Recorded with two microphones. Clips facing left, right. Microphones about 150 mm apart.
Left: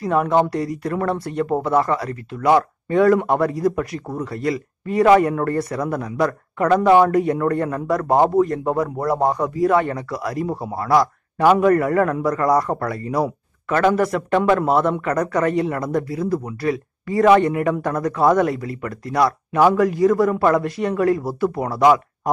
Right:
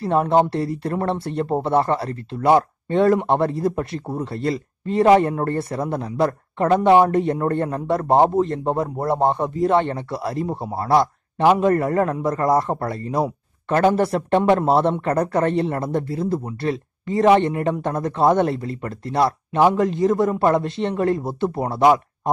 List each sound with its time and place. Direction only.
0.0 s speech: 30° right (ahead or behind)